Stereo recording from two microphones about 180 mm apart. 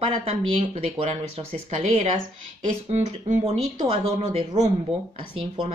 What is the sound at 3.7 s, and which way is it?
Speech, 30° right (ahead or behind).